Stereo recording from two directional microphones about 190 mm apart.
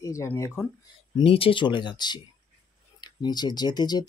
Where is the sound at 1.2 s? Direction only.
30° left (ahead or behind).